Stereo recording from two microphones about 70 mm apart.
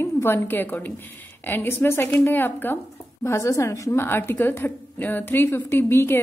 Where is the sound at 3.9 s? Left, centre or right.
Left.